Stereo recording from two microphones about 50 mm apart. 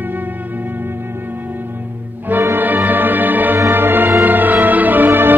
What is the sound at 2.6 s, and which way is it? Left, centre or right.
Music, right.